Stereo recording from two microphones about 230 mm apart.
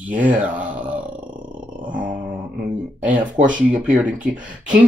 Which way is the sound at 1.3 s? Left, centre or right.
Centre.